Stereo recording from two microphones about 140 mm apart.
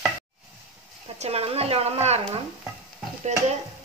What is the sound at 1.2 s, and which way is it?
A woman's voice, 45° right (ahead or behind).